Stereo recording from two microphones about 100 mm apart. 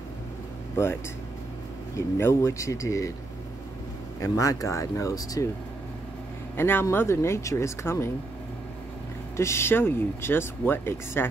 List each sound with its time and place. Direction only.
2.0 s speech: 25° left (ahead or behind)
4.2 s speech: 35° left (ahead or behind)
6.5 s speech: 25° left (ahead or behind)
9.4 s speech: 25° left (ahead or behind)